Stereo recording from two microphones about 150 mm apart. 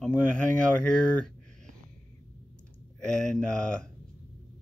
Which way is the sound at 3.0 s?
5° left (ahead or behind).